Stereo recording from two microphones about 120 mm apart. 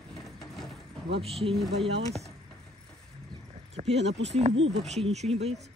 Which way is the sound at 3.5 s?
65° right (ahead or behind).